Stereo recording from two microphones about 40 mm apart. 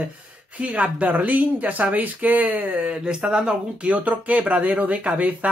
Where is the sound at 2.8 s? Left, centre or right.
Right.